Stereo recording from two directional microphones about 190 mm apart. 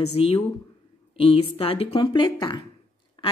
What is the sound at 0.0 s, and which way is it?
Speech, 30° left (ahead or behind).